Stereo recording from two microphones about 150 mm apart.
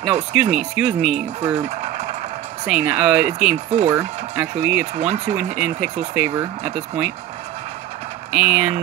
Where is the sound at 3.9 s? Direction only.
15° right (ahead or behind).